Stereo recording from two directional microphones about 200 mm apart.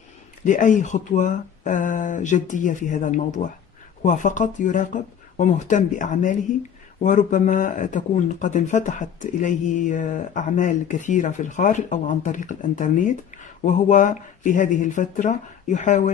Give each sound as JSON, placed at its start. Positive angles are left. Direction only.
{"t": 0.5, "sound": "speech", "side_deg": 40}